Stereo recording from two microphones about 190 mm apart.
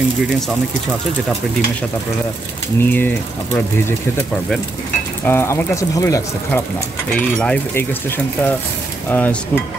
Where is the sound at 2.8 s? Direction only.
10° left (ahead or behind).